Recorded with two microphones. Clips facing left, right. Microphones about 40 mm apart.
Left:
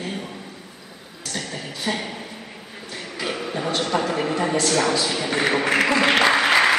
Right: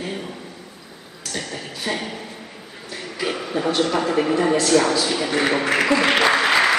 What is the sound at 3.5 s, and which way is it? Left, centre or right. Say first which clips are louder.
A man's voice: right 3 dB; centre.